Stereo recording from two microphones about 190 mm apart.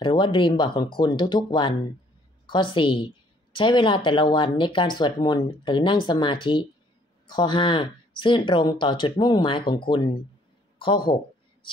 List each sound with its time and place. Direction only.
0.0 s speech: 25° left (ahead or behind)